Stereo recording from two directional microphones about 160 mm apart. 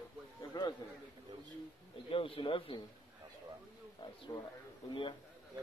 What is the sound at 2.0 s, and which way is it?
Speech, 35° left (ahead or behind).